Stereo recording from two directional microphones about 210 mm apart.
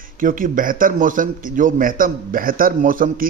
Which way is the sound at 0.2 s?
40° right (ahead or behind).